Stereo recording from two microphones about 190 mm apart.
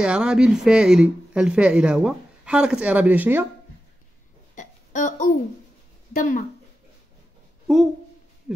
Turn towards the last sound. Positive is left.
turn(degrees=-5)  # may be behind; listen again after turning